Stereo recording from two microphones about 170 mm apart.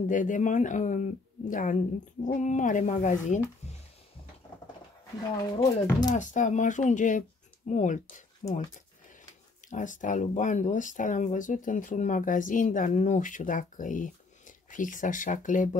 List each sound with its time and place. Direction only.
0.1 s speech: 50° left (ahead or behind)
3.6 s a sound: 40° left (ahead or behind)
5.4 s speech: 25° left (ahead or behind)
6.1 s speech: 45° left (ahead or behind)
9.7 s speech: 50° left (ahead or behind)